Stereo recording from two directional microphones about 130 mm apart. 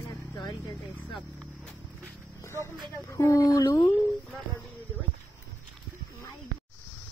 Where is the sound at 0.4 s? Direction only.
30° left (ahead or behind).